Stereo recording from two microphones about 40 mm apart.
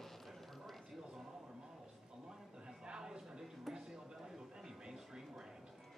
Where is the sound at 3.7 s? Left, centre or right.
Centre.